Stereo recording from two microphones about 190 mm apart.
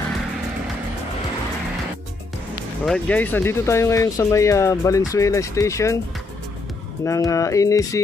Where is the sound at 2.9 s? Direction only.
10° left (ahead or behind).